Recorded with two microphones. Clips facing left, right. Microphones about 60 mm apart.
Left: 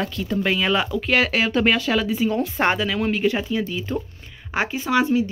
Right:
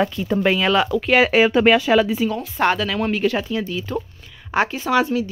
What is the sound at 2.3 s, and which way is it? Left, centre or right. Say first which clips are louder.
Speech: left 1 dB; left.